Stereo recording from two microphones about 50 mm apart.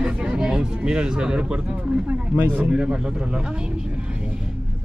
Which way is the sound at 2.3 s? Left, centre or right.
Right.